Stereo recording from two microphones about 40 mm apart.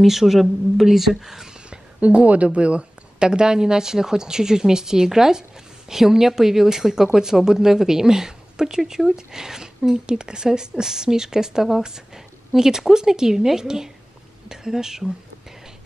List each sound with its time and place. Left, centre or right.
0.0 s speech: centre
2.0 s speech: right; by 15.0 s centre